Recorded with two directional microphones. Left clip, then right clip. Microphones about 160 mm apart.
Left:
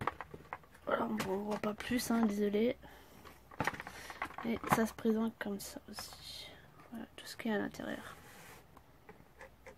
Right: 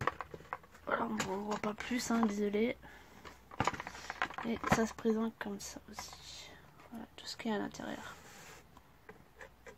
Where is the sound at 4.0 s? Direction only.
20° left (ahead or behind).